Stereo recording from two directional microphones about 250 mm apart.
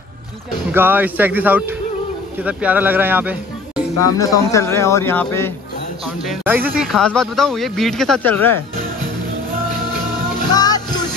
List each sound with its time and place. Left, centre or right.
0.7 s speech: centre
3.7 s speech: centre
6.2 s speech: centre
10.5 s music: centre